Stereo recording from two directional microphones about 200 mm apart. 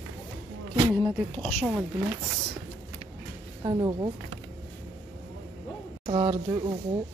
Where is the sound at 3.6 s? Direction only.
20° right (ahead or behind).